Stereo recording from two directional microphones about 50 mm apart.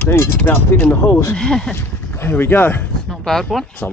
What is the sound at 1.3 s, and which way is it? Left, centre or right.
Speech, centre.